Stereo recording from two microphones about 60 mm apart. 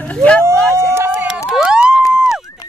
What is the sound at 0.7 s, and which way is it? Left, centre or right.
Run, right.